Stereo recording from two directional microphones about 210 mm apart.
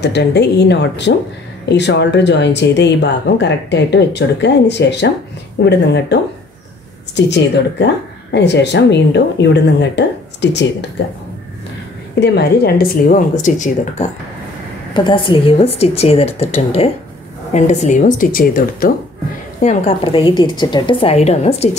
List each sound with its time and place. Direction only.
0.0 s speech: 55° left (ahead or behind)
7.2 s speech: 55° left (ahead or behind)
12.2 s speech: 50° left (ahead or behind)
15.0 s a woman's voice: 25° left (ahead or behind); by 18.9 s 45° left (ahead or behind)
19.6 s a woman's voice: 30° left (ahead or behind)